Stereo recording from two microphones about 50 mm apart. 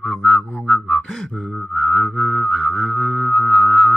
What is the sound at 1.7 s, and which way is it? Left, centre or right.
Mantra, centre.